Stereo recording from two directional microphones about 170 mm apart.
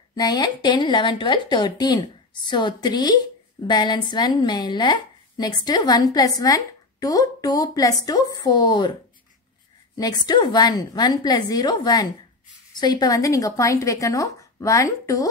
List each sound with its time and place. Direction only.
0.1 s a woman's voice: 25° left (ahead or behind)
9.9 s a woman's voice: 20° left (ahead or behind)